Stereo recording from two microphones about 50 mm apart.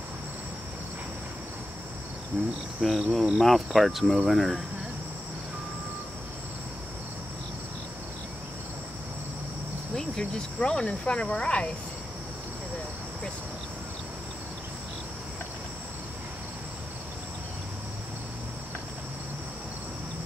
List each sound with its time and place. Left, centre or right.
2.3 s speech: centre
2.8 s cricket: centre
9.9 s speech: centre